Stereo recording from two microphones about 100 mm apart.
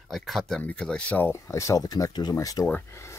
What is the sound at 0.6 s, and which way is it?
Speech, 15° left (ahead or behind).